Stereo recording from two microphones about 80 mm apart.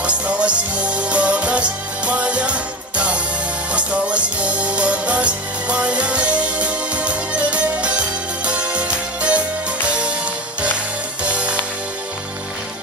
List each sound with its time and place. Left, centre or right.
0.0 s music: centre
11.2 s music: centre